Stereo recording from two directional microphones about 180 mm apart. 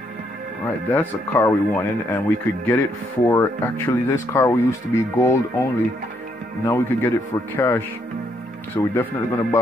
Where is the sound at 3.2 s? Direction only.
10° left (ahead or behind).